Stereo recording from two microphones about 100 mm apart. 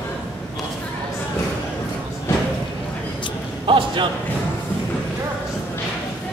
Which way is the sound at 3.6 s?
55° right (ahead or behind).